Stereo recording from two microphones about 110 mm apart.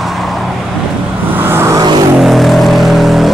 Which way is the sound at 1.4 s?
20° right (ahead or behind).